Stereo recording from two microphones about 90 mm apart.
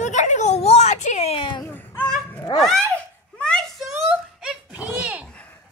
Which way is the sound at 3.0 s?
10° left (ahead or behind).